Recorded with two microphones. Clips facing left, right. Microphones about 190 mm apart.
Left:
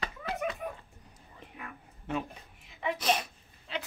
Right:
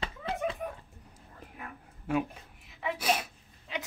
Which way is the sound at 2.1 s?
5° right (ahead or behind).